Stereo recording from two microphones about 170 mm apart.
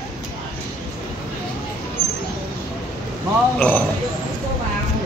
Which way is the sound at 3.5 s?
5° left (ahead or behind).